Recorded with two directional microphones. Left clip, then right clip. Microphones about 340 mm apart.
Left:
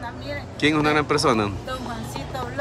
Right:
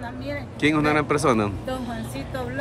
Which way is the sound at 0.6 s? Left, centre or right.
Centre.